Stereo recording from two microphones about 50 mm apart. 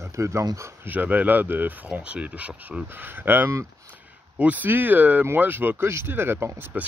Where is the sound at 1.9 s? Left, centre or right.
Right.